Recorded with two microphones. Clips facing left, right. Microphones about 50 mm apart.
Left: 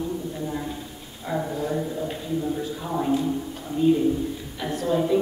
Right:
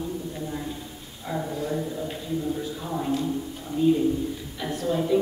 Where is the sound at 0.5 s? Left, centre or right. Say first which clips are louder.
Left 2 dB; centre.